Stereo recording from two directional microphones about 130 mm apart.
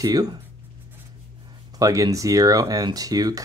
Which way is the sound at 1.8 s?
25° right (ahead or behind).